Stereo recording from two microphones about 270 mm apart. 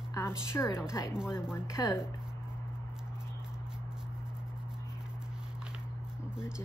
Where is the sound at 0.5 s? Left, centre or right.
Centre.